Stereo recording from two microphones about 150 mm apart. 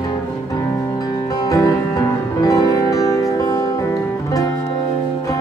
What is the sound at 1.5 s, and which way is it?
Music, 25° left (ahead or behind).